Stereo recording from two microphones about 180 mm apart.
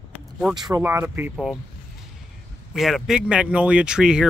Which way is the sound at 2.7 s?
Centre (ahead or behind).